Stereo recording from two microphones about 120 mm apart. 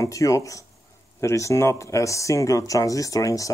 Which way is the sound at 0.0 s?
25° left (ahead or behind).